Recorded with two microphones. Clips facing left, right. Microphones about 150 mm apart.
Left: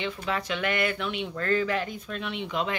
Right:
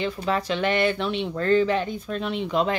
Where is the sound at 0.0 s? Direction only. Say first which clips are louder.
Right 5 dB; 35° right (ahead or behind).